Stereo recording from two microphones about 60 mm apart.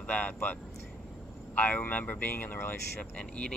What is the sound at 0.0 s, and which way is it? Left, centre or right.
Speech, left.